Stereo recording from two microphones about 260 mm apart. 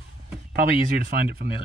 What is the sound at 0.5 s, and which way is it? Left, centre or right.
Speech, right.